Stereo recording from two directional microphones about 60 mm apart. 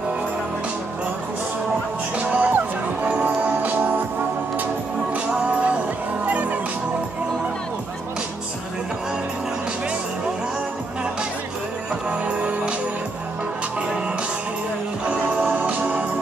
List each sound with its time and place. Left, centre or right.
2.1 s music: right
5.1 s music: right
12.1 s music: centre
15.0 s music: centre